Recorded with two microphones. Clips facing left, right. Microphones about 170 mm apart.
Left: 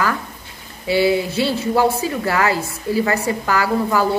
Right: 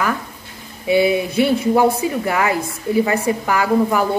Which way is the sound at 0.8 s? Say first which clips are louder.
Right 1 dB; 20° right (ahead or behind).